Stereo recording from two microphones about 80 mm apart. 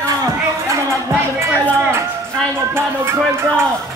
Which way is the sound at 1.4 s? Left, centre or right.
Right.